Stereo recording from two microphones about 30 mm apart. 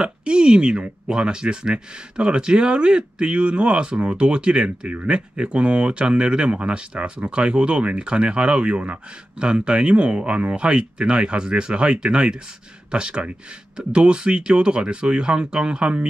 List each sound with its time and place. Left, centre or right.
0.0 s speech: right
4.6 s speech: right
5.0 s speech: right